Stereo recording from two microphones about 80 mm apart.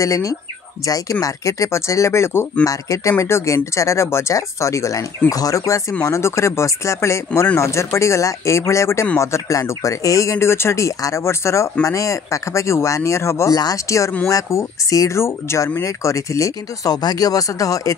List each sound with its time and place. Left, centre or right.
0.0 s speech: left
13.5 s speech: left